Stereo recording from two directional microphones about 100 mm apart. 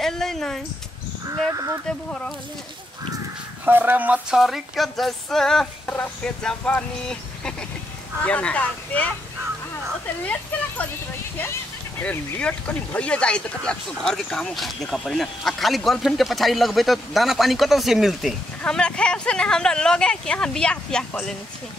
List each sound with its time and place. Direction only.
0.0 s a sound: 5° left (ahead or behind)
1.5 s speech: 35° right (ahead or behind)
1.9 s speech: 10° left (ahead or behind)
3.6 s speech: 20° right (ahead or behind)
4.4 s speech: centre (ahead or behind); by 9.1 s 15° left (ahead or behind)
10.2 s speech: 15° left (ahead or behind)
12.0 s speech: 15° left (ahead or behind); by 18.3 s centre (ahead or behind)
18.6 s speech: 10° left (ahead or behind)